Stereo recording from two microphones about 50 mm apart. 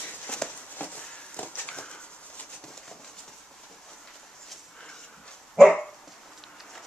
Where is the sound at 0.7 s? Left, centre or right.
Left.